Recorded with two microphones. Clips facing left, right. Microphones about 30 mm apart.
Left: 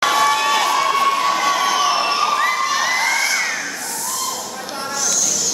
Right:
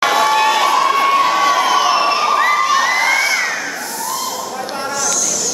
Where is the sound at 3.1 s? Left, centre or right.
Right.